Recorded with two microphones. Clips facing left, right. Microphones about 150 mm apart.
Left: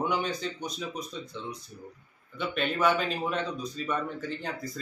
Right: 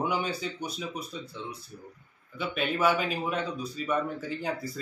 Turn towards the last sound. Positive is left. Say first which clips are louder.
# right 3 dB
turn(degrees=-10)  # may be behind; listen again after turning